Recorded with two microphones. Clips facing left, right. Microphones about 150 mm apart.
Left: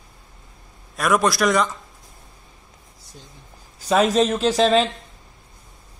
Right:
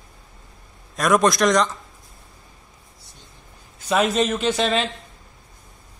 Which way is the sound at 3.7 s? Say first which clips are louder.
Left 2 dB; 35° left (ahead or behind).